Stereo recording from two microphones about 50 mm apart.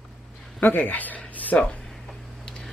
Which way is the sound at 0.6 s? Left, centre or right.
Left.